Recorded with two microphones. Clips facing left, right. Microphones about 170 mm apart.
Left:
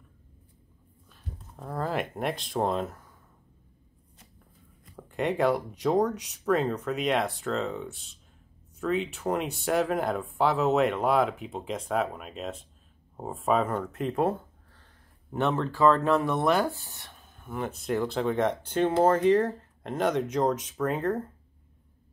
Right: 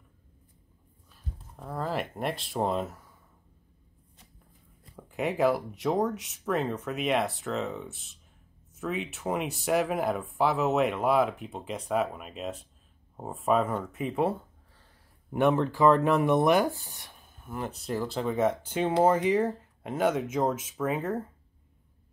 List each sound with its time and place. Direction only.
1.6 s speech: centre (ahead or behind)
4.9 s speech: 5° right (ahead or behind)
15.3 s speech: 15° right (ahead or behind)
17.4 s speech: 5° right (ahead or behind)